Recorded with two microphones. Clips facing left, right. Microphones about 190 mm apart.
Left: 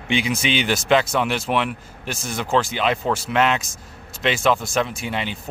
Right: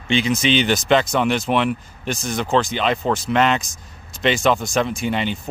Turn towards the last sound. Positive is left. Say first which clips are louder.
# right 5 dB
turn(degrees=5)  # may be behind; listen again after turning